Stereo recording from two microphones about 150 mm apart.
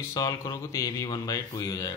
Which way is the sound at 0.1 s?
25° left (ahead or behind).